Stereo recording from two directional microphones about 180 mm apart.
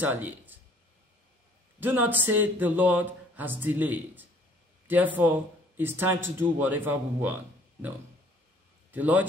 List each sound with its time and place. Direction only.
0.0 s speech: 10° right (ahead or behind)
1.8 s speech: 10° right (ahead or behind)
8.9 s speech: 10° right (ahead or behind)